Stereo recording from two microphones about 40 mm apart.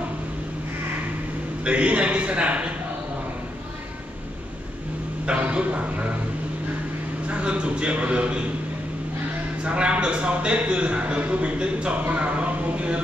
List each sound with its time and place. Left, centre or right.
1.6 s a man's voice: right
5.2 s a sound: right
7.2 s a man's voice: right
9.6 s a man's voice: right